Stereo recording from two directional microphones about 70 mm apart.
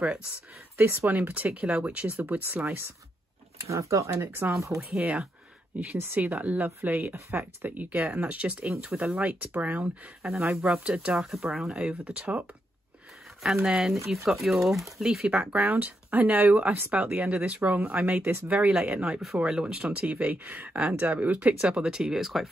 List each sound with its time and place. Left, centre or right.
0.7 s speech: right
3.6 s speech: right
5.9 s speech: right; by 11.8 s centre
11.8 s speech: centre
13.4 s speech: centre
15.2 s speech: right
19.2 s speech: centre